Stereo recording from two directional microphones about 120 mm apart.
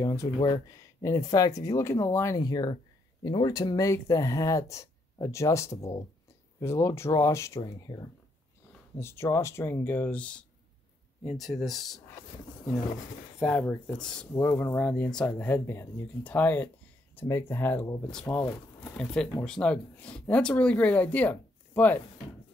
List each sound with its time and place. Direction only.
0.0 s speech: 25° left (ahead or behind)
8.9 s speech: 20° left (ahead or behind); by 12.0 s centre (ahead or behind)
13.4 s speech: 10° left (ahead or behind)
14.3 s speech: 20° left (ahead or behind)